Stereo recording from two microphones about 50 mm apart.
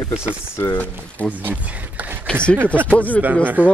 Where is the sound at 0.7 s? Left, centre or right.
Left.